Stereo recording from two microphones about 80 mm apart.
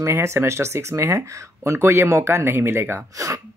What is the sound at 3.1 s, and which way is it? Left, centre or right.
Speech, right.